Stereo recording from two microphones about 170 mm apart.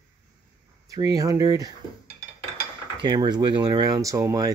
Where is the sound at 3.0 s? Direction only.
25° right (ahead or behind).